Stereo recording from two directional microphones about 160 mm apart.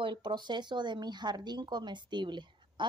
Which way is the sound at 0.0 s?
30° right (ahead or behind).